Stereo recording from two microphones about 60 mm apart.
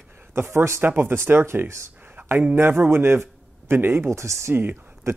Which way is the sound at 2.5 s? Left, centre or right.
Right.